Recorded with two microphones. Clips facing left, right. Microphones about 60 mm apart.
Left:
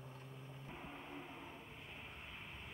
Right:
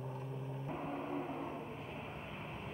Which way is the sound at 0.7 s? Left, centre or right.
Centre.